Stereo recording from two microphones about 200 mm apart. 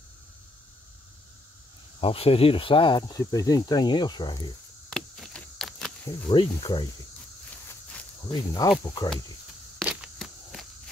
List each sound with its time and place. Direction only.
2.0 s speech: 30° left (ahead or behind)
4.8 s a sound: centre (ahead or behind)
6.3 s speech: 25° left (ahead or behind)
8.3 s speech: 20° left (ahead or behind)
9.8 s walk: 5° right (ahead or behind)